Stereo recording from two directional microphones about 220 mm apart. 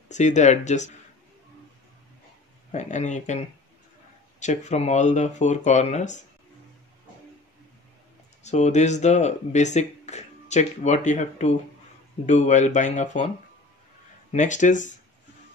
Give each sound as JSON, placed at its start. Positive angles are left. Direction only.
{"t": 0.1, "sound": "speech", "side_deg": 30}
{"t": 2.7, "sound": "speech", "side_deg": 30}
{"t": 8.5, "sound": "speech", "side_deg": 30}
{"t": 14.3, "sound": "speech", "side_deg": 35}